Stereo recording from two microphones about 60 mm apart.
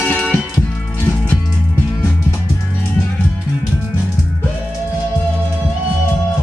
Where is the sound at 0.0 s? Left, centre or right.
Centre.